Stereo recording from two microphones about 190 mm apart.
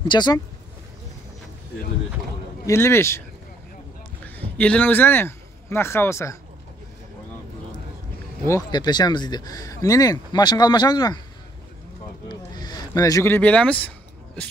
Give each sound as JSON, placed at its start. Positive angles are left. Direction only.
{"t": 0.1, "sound": "speech", "side_deg": 20}
{"t": 2.6, "sound": "a man's voice", "side_deg": 15}
{"t": 4.2, "sound": "speech", "side_deg": 10}
{"t": 8.5, "sound": "speech", "side_deg": 20}
{"t": 12.3, "sound": "a sound", "side_deg": 20}